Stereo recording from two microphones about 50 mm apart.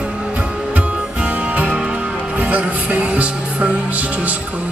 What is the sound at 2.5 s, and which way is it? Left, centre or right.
Music, right.